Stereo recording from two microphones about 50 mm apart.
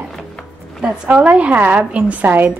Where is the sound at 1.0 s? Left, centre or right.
Right.